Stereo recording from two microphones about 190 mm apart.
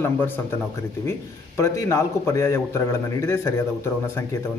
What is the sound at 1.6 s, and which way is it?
A man's voice, 15° left (ahead or behind).